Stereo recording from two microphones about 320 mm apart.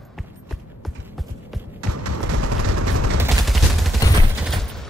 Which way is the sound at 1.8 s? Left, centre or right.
Right.